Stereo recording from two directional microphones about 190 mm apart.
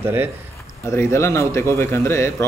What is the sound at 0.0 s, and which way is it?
Speech, 10° right (ahead or behind).